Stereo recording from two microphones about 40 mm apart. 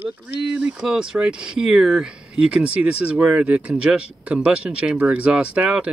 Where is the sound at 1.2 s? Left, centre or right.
Right.